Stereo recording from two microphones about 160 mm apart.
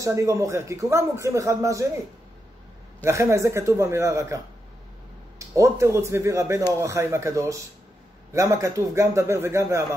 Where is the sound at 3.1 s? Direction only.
15° right (ahead or behind).